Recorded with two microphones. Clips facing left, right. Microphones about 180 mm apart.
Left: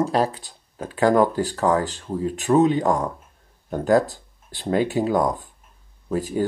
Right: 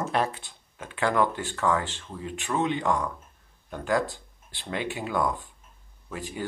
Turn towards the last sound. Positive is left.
turn(degrees=40)  # may be behind; listen again after turning